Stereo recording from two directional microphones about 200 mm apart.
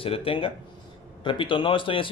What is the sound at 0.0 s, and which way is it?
A man's voice, 25° left (ahead or behind).